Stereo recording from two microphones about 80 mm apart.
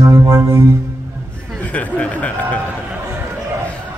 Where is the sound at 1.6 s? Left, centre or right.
Centre.